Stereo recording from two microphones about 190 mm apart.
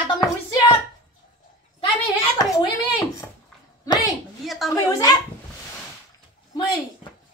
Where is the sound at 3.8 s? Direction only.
20° left (ahead or behind).